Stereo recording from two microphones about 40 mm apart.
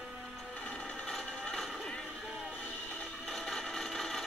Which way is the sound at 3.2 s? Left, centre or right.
Centre.